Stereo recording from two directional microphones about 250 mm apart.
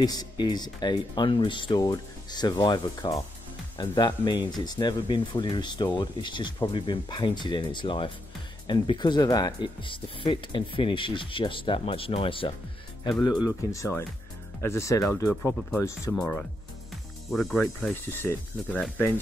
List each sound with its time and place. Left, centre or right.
0.0 s speech: centre